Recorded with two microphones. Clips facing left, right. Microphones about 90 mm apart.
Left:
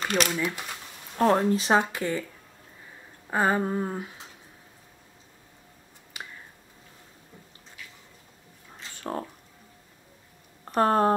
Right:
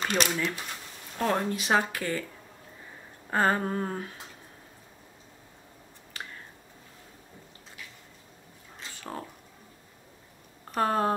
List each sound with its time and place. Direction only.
0.0 s speech: centre (ahead or behind)
1.1 s speech: 30° left (ahead or behind)
3.3 s a sound: 10° left (ahead or behind)
6.2 s finger snapping: 15° left (ahead or behind)
10.8 s speech: 35° left (ahead or behind)